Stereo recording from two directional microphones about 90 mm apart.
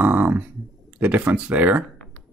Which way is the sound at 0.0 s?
20° right (ahead or behind).